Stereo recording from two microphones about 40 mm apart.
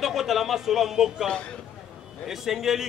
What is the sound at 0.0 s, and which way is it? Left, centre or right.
A man's voice, centre.